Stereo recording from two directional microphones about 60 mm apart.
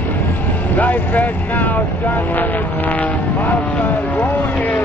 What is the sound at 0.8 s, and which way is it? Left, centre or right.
Vehicle, left.